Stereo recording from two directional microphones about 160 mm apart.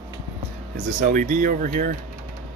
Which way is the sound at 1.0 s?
55° right (ahead or behind).